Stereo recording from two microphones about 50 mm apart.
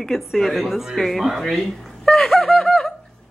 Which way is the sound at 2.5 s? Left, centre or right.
Centre.